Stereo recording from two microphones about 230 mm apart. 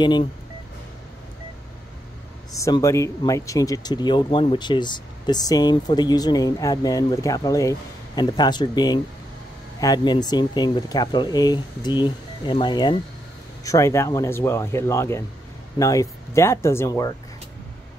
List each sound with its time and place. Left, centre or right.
0.0 s speech: centre
2.5 s speech: centre